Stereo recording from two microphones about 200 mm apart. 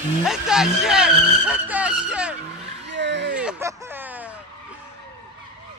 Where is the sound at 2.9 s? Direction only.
60° right (ahead or behind).